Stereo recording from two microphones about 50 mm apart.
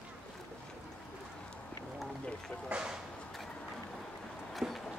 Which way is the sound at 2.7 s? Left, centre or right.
Centre.